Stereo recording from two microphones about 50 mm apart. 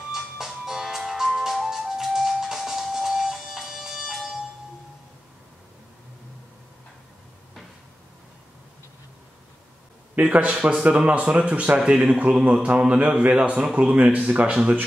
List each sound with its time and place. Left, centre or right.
0.1 s music: centre
10.2 s speech: right
11.8 s speech: centre